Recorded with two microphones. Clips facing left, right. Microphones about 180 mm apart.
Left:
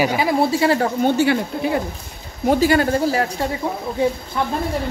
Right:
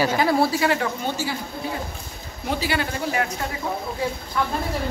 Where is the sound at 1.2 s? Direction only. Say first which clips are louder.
Left 10 dB; 65° left (ahead or behind).